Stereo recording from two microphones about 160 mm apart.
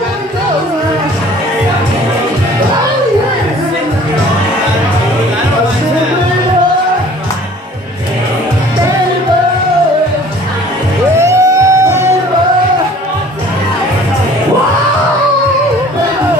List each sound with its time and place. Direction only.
11.1 s music: 20° right (ahead or behind)